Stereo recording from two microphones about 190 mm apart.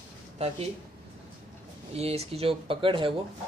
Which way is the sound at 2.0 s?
30° right (ahead or behind).